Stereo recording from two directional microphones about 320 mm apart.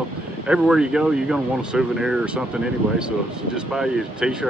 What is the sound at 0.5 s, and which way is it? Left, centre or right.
Speech, centre.